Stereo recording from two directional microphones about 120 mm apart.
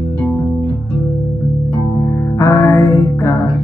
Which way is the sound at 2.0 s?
25° left (ahead or behind).